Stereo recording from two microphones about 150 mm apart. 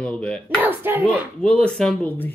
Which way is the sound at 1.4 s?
5° left (ahead or behind).